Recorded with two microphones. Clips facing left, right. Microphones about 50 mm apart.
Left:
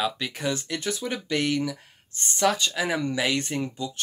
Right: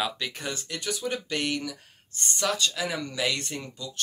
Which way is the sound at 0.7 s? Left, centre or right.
Left.